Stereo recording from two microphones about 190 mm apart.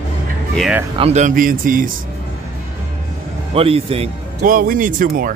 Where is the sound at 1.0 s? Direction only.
35° right (ahead or behind).